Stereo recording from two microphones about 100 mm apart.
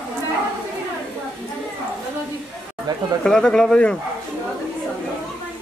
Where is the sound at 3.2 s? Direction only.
5° left (ahead or behind).